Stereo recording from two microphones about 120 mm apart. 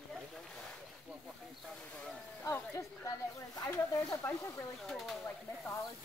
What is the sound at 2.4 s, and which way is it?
Speech, 25° left (ahead or behind).